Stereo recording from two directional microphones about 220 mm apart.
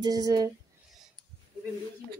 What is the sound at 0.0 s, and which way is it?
Speech, 15° right (ahead or behind).